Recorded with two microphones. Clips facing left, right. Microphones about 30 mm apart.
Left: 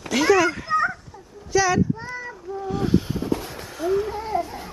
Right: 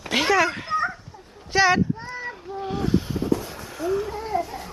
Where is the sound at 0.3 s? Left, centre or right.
Right.